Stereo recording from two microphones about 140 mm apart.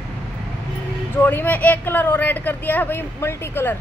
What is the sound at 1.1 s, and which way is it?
A woman's voice, 15° left (ahead or behind).